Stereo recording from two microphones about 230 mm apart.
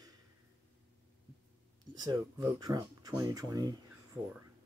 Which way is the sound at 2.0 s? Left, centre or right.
Centre.